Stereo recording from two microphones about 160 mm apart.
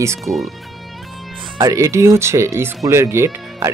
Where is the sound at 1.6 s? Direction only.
20° right (ahead or behind).